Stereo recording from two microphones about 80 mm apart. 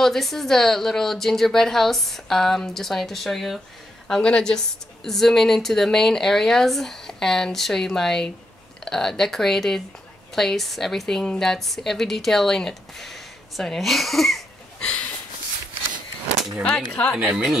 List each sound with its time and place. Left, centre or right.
0.0 s a woman's voice: centre
14.9 s a sound: centre
16.6 s speech: centre